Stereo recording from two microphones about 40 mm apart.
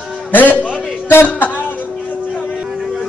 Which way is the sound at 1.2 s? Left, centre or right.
Left.